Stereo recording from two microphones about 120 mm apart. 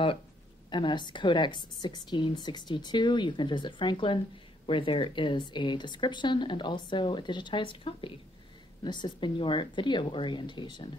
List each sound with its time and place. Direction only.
0.7 s a woman's voice: 40° left (ahead or behind)